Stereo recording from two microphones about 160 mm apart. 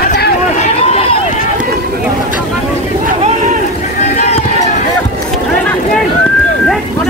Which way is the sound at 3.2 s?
50° right (ahead or behind).